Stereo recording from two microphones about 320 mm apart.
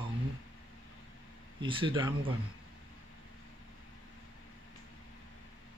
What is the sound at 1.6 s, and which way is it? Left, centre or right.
Speech, centre.